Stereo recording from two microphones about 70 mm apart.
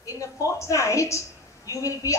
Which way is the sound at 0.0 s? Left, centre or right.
Left.